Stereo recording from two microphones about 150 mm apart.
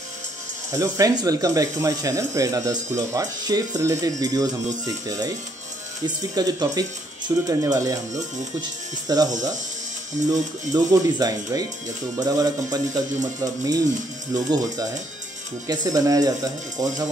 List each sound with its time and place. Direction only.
0.7 s speech: 20° right (ahead or behind)
10.7 s speech: 25° right (ahead or behind)